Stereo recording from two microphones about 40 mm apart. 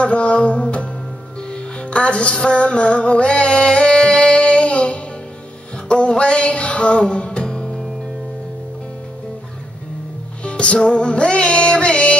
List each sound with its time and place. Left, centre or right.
0.0 s music: left
10.4 s music: left